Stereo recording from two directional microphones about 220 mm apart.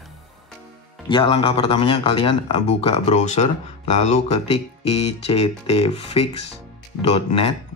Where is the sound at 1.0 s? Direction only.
20° left (ahead or behind).